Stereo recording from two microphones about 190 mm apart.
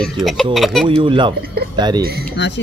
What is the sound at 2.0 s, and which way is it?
Speech, 55° right (ahead or behind).